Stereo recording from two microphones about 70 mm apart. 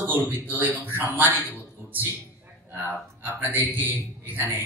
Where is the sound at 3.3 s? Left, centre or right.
Right.